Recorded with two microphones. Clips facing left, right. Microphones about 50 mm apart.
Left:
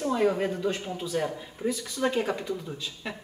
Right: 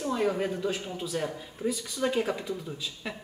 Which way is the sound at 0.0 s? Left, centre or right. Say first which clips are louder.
Left 3 dB; centre.